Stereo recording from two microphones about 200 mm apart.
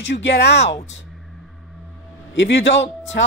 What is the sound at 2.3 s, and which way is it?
Speech, 60° left (ahead or behind).